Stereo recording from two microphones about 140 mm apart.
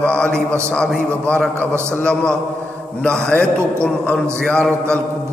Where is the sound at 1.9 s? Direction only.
5° left (ahead or behind).